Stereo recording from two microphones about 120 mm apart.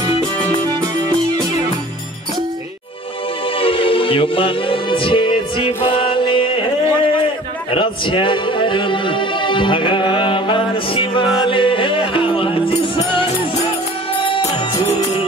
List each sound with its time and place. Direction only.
3.5 s music: 50° left (ahead or behind)
7.7 s music: 45° left (ahead or behind)